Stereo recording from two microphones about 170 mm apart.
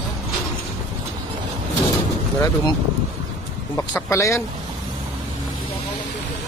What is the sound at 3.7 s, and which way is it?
Speech, 15° left (ahead or behind).